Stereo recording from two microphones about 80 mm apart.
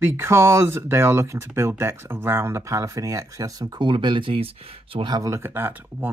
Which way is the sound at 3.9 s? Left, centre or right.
Right.